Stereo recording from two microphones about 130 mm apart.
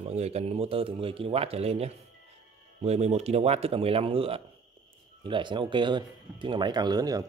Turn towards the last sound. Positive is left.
turn(degrees=-30)  # may be behind; listen again after turning